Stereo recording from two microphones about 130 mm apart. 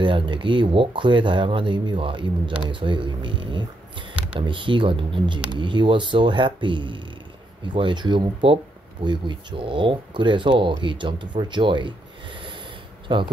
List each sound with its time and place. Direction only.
0.0 s speech: 40° right (ahead or behind)
13.1 s speech: 40° right (ahead or behind)